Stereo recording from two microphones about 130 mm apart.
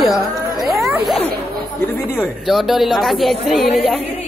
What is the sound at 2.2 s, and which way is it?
Speech, centre (ahead or behind).